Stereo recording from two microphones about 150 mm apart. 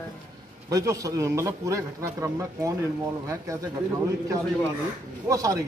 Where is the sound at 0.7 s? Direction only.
20° right (ahead or behind).